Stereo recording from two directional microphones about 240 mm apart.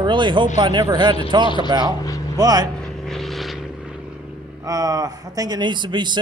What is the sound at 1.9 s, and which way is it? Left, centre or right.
Speech, centre.